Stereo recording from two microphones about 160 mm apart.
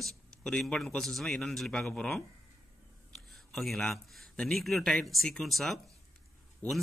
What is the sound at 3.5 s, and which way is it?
Speech, centre (ahead or behind).